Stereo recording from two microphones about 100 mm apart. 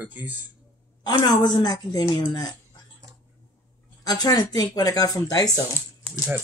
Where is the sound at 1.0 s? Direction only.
45° left (ahead or behind).